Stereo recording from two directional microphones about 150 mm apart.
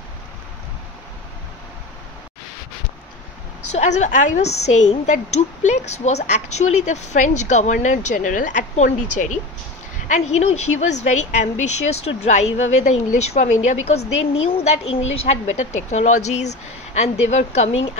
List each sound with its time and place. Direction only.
3.7 s a woman's voice: 50° left (ahead or behind)